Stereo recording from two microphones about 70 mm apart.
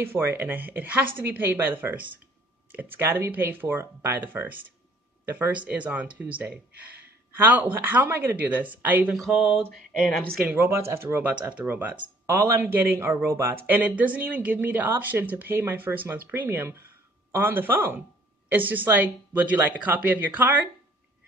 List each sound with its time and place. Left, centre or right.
0.0 s speech: right
9.2 s a sound: centre
10.6 s speech: right
12.3 s speech: right
13.7 s speech: right